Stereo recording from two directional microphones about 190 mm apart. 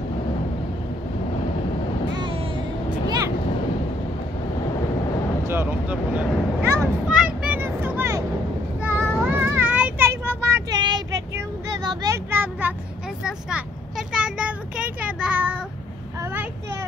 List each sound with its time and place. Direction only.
5.5 s a sound: 10° right (ahead or behind)
8.8 s child singing: 10° right (ahead or behind)
13.2 s vehicle: 5° right (ahead or behind)